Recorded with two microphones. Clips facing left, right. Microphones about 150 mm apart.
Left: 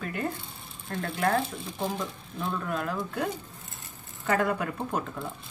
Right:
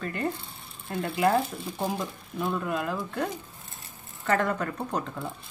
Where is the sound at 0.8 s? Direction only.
5° right (ahead or behind).